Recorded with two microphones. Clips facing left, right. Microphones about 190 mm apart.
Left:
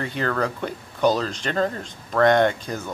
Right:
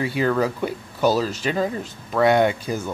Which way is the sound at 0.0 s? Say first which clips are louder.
Right 4 dB; 10° right (ahead or behind).